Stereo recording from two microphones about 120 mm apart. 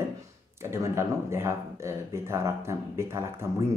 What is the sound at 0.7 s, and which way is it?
Speech, 25° right (ahead or behind).